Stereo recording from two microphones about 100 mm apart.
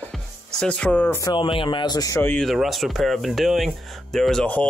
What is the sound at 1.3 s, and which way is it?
Speech, 60° left (ahead or behind).